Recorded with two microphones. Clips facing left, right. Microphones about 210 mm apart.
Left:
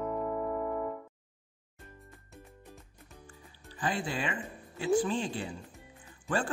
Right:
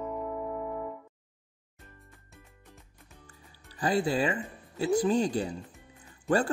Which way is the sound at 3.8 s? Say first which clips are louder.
Right 7 dB; 40° right (ahead or behind).